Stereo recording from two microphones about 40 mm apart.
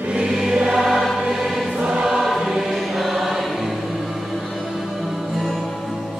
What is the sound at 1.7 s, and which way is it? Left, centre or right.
Choir, right.